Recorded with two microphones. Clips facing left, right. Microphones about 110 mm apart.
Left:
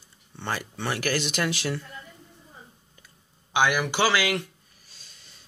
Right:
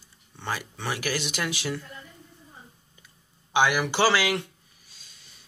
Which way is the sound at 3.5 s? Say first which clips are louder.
Right 1 dB; 20° right (ahead or behind).